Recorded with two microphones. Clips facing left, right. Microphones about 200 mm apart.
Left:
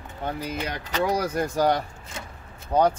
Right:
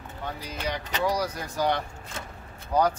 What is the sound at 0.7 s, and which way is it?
Speech, 55° left (ahead or behind).